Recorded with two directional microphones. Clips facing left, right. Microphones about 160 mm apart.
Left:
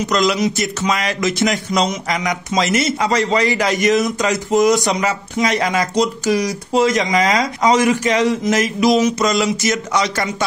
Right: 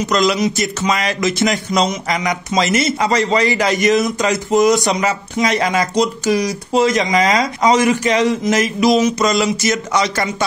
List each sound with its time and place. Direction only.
0.1 s speech: 30° right (ahead or behind)